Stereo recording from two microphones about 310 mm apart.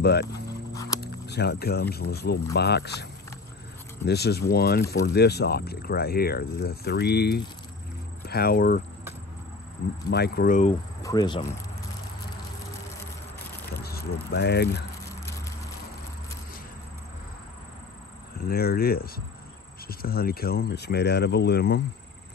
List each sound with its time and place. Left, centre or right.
0.0 s speech: left
10.0 s speech: left
11.0 s speech: centre
13.8 s speech: left
18.4 s speech: left